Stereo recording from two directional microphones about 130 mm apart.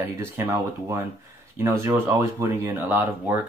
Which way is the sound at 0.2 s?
20° right (ahead or behind).